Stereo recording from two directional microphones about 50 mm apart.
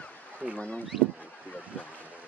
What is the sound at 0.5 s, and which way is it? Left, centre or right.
Speech, left.